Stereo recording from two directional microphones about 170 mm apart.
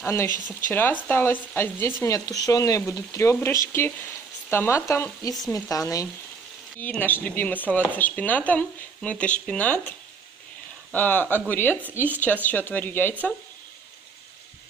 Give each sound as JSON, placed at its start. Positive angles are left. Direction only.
{"t": 0.0, "sound": "speech", "side_deg": 15}